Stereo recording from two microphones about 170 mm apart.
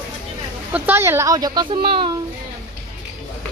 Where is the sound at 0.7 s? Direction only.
10° right (ahead or behind); by 2.1 s 30° right (ahead or behind).